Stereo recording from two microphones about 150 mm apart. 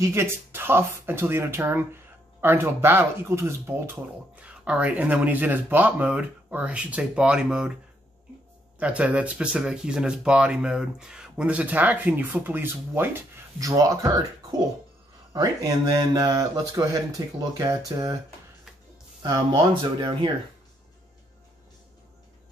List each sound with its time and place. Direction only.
0.0 s speech: 15° right (ahead or behind)
8.7 s speech: 10° right (ahead or behind); by 14.2 s 25° right (ahead or behind)
15.3 s speech: 25° right (ahead or behind)
20.0 s speech: 30° right (ahead or behind)